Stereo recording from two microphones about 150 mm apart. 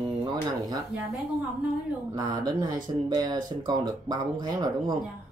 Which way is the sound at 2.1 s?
30° right (ahead or behind).